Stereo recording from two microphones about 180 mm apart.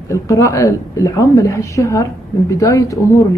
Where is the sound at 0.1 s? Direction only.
15° left (ahead or behind).